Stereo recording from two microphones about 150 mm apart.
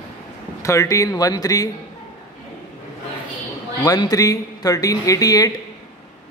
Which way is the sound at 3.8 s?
25° left (ahead or behind).